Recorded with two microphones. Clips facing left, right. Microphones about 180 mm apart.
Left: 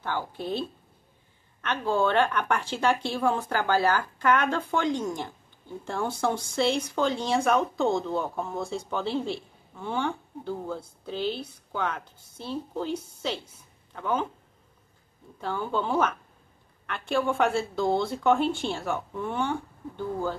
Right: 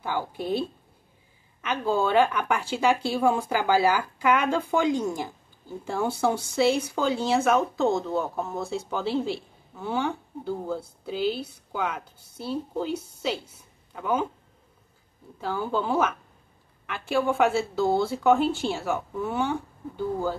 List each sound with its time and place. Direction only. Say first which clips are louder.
0.0 s speech: right 2 dB; 10° right (ahead or behind)
15.4 s speech: right 2 dB; 5° right (ahead or behind)